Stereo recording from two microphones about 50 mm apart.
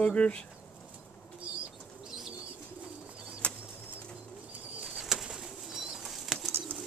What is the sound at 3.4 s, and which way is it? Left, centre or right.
Bird flight, left.